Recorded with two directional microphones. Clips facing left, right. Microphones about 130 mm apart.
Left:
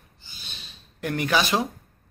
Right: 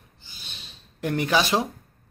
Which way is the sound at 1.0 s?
25° right (ahead or behind).